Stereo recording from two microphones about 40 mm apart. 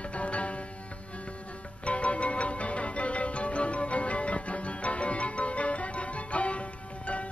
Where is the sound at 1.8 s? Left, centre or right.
Left.